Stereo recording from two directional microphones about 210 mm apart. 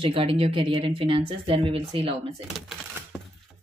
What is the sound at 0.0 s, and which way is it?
Speech, 25° right (ahead or behind).